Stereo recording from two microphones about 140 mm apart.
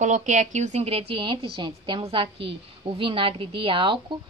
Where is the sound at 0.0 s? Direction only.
60° right (ahead or behind).